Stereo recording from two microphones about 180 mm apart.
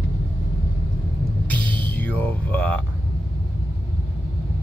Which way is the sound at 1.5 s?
10° left (ahead or behind).